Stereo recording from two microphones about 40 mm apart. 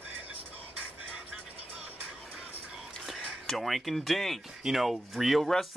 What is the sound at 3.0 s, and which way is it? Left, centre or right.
Speech, centre.